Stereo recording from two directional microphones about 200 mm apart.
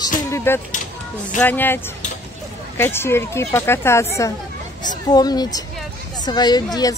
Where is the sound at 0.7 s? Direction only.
40° left (ahead or behind).